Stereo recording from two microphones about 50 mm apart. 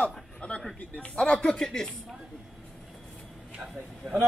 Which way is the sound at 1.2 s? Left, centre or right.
Centre.